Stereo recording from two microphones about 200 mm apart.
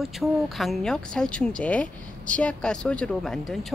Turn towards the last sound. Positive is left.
turn(degrees=0)  # may be behind; listen again after turning